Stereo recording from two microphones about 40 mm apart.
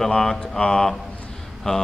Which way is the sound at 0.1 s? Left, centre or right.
Centre.